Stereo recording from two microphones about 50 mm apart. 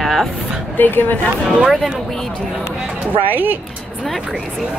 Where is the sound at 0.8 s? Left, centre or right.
Left.